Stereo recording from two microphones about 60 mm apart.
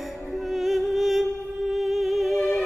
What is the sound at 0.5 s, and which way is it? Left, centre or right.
Music, centre.